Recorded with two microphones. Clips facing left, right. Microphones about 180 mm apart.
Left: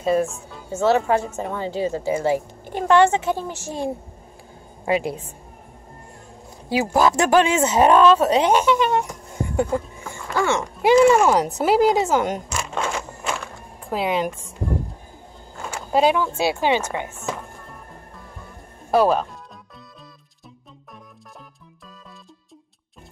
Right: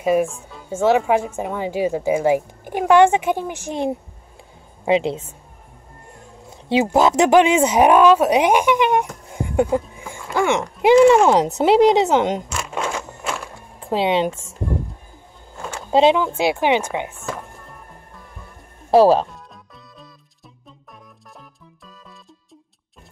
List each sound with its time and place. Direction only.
0.0 s a woman's voice: 10° right (ahead or behind)
6.7 s speech: 20° right (ahead or behind)
12.4 s speech: 5° right (ahead or behind)
12.9 s a sound: centre (ahead or behind)
13.8 s speech: 25° right (ahead or behind)
15.9 s speech: 25° right (ahead or behind)
18.9 s speech: 30° right (ahead or behind)